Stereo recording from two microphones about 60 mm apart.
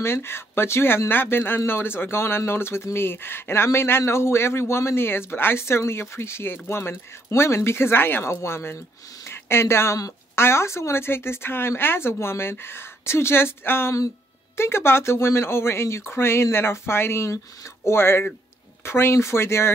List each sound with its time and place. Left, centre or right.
0.0 s speech: left
9.2 s a sound: left
10.3 s speech: left